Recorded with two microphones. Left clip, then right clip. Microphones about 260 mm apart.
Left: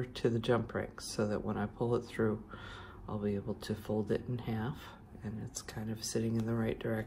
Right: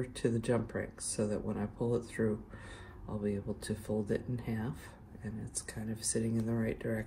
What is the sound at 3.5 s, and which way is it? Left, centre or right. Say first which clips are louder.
Speech: even; centre.